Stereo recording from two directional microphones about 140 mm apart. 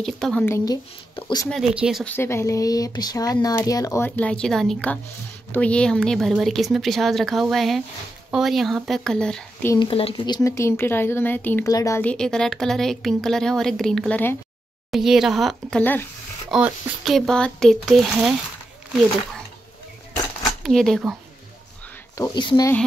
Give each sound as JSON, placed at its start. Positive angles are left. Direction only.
{"t": 0.0, "sound": "speech", "side_deg": 5}
{"t": 1.1, "sound": "speech", "side_deg": 35}
{"t": 1.5, "sound": "speech", "side_deg": -5}
{"t": 2.0, "sound": "speech", "side_deg": 15}
{"t": 4.2, "sound": "speech", "side_deg": 5}
{"t": 9.8, "sound": "speech", "side_deg": 40}
{"t": 12.0, "sound": "speech", "side_deg": 5}
{"t": 14.9, "sound": "speech", "side_deg": 0}
{"t": 15.8, "sound": "speech", "side_deg": 15}
{"t": 16.4, "sound": "speech", "side_deg": -5}
{"t": 20.6, "sound": "speech", "side_deg": 5}
{"t": 22.1, "sound": "speech", "side_deg": 25}